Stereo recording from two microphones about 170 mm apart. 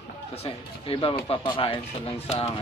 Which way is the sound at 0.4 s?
35° left (ahead or behind).